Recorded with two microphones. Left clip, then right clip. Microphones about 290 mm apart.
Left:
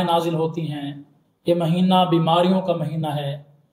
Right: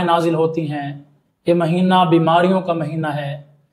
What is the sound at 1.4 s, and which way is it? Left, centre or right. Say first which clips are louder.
Speech: right 4 dB; right.